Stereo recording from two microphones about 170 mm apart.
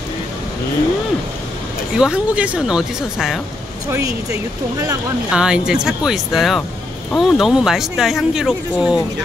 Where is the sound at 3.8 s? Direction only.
15° right (ahead or behind).